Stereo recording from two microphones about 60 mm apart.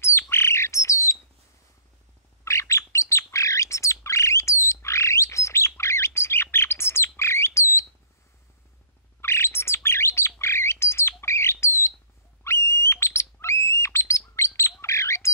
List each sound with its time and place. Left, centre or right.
0.0 s bird: left
2.4 s bird: left
9.2 s bird: left